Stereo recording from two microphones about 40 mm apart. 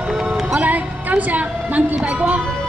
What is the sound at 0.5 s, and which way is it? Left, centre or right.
A woman's voice, right.